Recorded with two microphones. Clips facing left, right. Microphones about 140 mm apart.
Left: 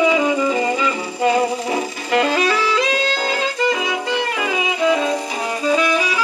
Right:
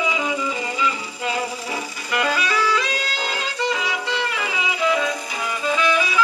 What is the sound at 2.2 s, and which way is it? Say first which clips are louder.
Music: left 4 dB; 35° left (ahead or behind).